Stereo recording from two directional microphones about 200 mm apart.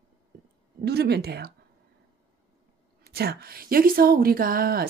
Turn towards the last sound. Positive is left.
turn(degrees=-45)  # may be behind; listen again after turning